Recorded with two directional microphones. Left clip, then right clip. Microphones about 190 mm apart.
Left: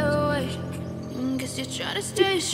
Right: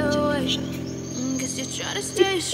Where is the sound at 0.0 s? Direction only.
Centre (ahead or behind).